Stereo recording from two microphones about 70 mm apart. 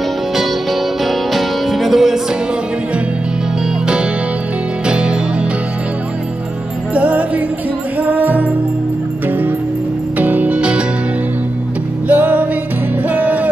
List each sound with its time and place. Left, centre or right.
1.0 s music: centre
4.8 s music: centre
6.9 s music: centre
10.1 s music: right
12.1 s music: right